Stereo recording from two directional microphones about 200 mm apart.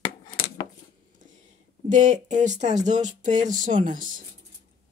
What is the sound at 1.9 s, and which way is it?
Speech, 35° right (ahead or behind).